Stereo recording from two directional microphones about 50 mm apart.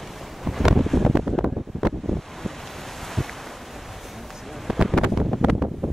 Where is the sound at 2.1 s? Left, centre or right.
Centre.